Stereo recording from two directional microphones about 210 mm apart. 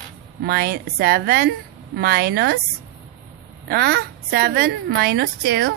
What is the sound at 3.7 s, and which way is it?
A woman's voice, 45° right (ahead or behind).